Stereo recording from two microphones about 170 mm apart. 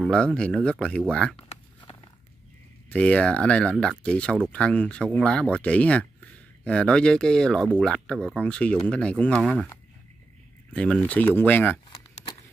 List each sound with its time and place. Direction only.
0.0 s speech: 5° left (ahead or behind)
1.3 s a sound: 35° left (ahead or behind)
2.9 s speech: 5° left (ahead or behind)
10.7 s speech: 5° left (ahead or behind)